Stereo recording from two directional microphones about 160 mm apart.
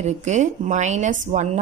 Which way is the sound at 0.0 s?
45° right (ahead or behind).